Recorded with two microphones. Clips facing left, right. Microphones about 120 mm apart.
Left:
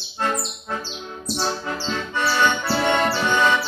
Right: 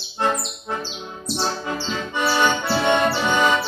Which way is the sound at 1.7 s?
10° right (ahead or behind).